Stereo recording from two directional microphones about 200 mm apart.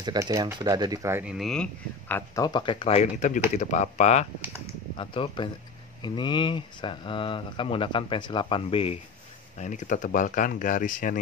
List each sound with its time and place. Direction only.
0.0 s speech: 15° right (ahead or behind); by 8.9 s 30° left (ahead or behind)
9.6 s speech: 40° left (ahead or behind)